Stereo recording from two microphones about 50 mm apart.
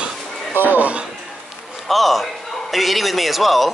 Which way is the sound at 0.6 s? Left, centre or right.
Right.